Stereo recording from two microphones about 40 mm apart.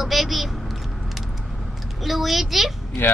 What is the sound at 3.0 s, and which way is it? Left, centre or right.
Speech, left.